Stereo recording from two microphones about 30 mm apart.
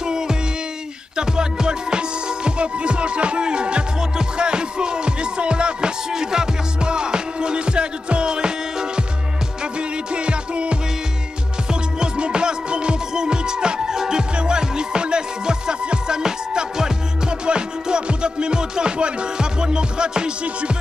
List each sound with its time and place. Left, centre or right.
0.0 s music: right
12.0 s music: right
17.3 s music: right